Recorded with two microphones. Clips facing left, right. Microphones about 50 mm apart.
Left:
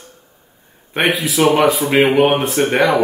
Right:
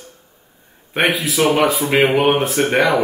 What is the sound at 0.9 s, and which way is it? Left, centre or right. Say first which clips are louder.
Speech: left 1 dB; centre.